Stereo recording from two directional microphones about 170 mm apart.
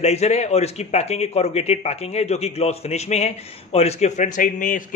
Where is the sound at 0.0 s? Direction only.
40° left (ahead or behind).